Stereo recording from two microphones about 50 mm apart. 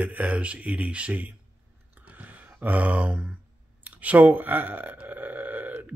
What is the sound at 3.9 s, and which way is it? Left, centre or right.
Speech, right.